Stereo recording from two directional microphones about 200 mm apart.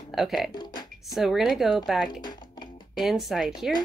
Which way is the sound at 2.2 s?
20° left (ahead or behind).